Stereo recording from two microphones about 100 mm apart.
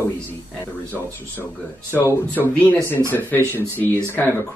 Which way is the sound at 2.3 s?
20° left (ahead or behind).